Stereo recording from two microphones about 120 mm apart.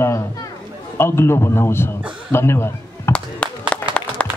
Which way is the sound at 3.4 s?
10° left (ahead or behind).